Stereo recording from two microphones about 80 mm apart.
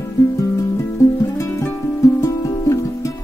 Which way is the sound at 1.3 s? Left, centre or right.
Left.